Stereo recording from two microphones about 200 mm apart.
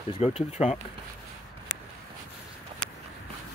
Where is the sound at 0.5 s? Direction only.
35° left (ahead or behind).